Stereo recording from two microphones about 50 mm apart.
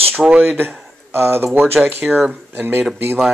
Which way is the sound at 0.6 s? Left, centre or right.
Right.